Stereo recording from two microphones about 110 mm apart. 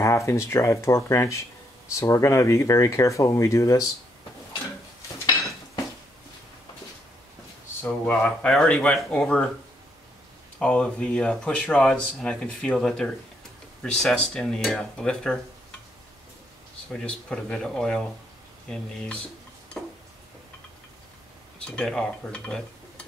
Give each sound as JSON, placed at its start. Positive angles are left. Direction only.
{"t": 0.0, "sound": "speech", "side_deg": 25}
{"t": 8.0, "sound": "speech", "side_deg": 15}
{"t": 10.6, "sound": "speech", "side_deg": 10}
{"t": 16.9, "sound": "speech", "side_deg": 10}
{"t": 19.7, "sound": "a sound", "side_deg": 5}
{"t": 21.5, "sound": "speech", "side_deg": 10}